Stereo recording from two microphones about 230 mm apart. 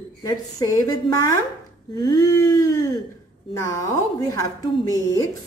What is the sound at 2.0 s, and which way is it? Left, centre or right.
A woman's voice, centre.